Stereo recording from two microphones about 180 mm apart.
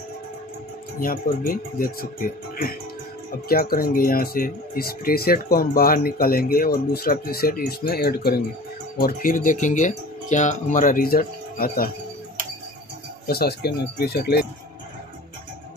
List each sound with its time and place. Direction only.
1.0 s speech: 50° left (ahead or behind)
13.3 s speech: 60° left (ahead or behind)